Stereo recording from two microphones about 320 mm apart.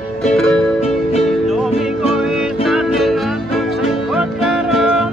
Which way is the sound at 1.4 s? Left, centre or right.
Centre.